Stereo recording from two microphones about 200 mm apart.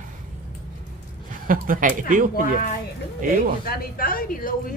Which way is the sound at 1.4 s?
45° right (ahead or behind).